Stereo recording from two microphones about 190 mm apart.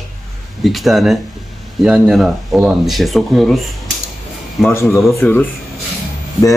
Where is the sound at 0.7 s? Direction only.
Centre (ahead or behind).